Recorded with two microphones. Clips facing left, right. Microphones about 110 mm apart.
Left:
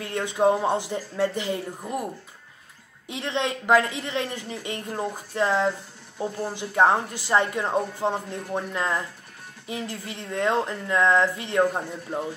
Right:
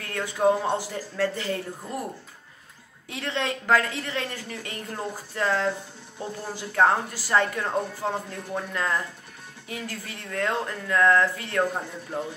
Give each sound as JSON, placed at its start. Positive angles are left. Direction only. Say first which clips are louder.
{"t": 0.0, "sound": "a woman's voice", "louder": "left 1 dB", "side_deg": 20}
{"t": 3.1, "sound": "a woman's voice", "louder": "left 2 dB", "side_deg": 20}